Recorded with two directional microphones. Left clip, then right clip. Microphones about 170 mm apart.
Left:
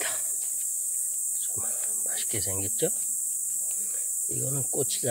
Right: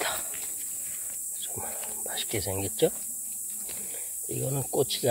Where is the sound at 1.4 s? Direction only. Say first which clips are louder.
Left 3 dB; 5° left (ahead or behind).